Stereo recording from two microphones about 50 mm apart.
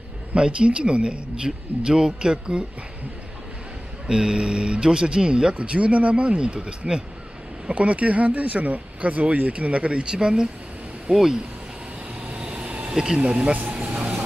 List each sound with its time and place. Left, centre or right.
0.3 s speech: right
4.1 s speech: centre
12.3 s train: right
12.9 s speech: centre
13.7 s vehicle: right